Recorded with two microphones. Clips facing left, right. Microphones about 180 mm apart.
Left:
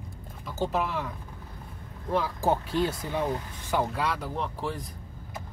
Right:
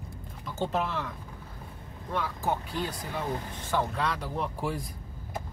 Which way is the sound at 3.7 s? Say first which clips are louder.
Left 2 dB; 5° left (ahead or behind).